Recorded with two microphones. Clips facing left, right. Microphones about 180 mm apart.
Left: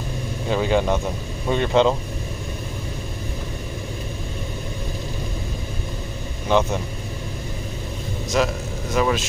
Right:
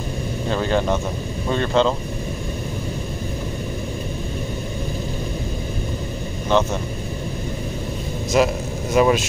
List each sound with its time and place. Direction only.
0.5 s speech: 10° left (ahead or behind)
6.5 s speech: 10° left (ahead or behind)
8.3 s speech: 10° right (ahead or behind)